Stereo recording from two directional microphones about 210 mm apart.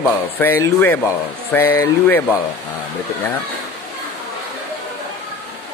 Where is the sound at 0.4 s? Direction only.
10° left (ahead or behind).